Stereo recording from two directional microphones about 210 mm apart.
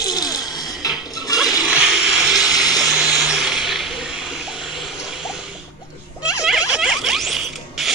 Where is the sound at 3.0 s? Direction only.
5° right (ahead or behind).